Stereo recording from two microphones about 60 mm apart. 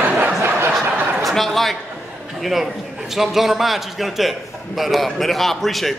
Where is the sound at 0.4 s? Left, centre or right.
Right.